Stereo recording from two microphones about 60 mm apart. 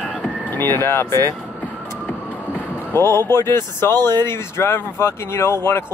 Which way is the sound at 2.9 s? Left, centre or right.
Left.